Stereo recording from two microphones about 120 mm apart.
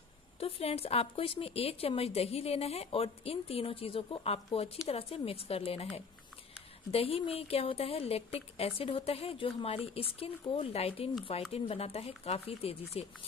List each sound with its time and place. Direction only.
0.4 s speech: 55° left (ahead or behind)